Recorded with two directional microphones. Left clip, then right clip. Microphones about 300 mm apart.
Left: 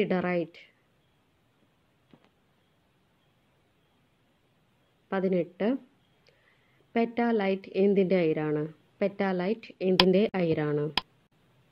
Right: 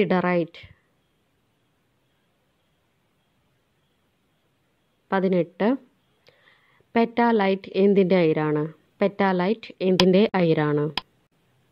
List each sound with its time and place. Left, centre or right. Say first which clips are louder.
0.0 s a woman's voice: right 6 dB; right
5.0 s a woman's voice: right 6 dB; right
6.9 s a woman's voice: right 7 dB; right